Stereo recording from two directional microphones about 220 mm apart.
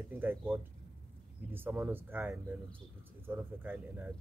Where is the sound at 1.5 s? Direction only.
10° right (ahead or behind).